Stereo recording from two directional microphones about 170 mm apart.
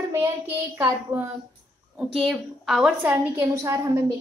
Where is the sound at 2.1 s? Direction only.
Centre (ahead or behind).